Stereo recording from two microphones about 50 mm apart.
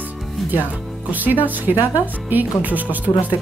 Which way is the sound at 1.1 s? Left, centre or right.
Right.